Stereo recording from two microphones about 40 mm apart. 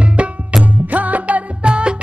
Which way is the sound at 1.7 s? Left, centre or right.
Right.